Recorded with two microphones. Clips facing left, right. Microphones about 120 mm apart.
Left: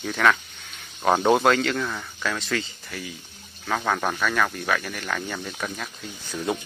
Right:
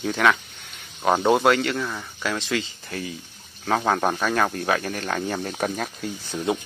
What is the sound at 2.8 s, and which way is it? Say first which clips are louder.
Speech: right 4 dB; 30° right (ahead or behind).